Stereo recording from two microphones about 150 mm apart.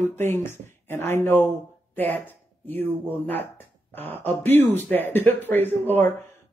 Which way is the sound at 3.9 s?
15° left (ahead or behind).